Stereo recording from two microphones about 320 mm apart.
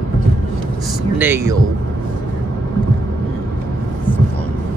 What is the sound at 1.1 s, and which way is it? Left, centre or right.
Speech, centre.